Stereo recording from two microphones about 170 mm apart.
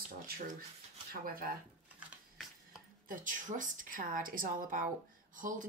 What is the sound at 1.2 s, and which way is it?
Speech, 60° right (ahead or behind).